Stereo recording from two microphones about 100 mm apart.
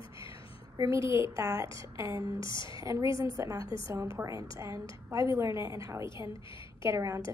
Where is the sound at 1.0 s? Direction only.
55° left (ahead or behind).